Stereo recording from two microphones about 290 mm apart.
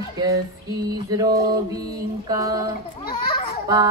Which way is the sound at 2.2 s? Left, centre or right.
Centre.